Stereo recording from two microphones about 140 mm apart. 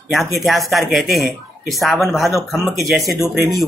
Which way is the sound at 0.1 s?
Centre (ahead or behind).